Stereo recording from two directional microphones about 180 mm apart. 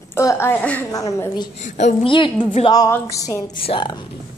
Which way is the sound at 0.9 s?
15° left (ahead or behind).